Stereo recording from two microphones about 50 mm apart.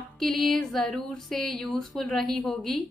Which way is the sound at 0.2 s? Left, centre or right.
Centre.